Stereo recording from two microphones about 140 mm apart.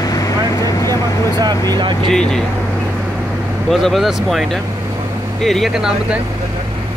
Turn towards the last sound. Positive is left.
turn(degrees=-5)  # may be behind; listen again after turning